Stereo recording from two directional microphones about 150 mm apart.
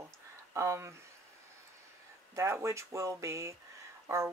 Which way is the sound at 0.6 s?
20° right (ahead or behind).